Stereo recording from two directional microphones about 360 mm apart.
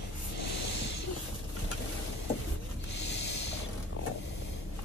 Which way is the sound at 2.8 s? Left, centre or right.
Left.